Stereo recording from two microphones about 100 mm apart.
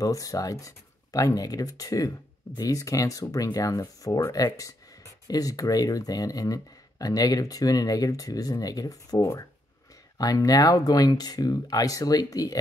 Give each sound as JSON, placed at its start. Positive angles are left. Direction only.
{"t": 0.0, "sound": "speech", "side_deg": 35}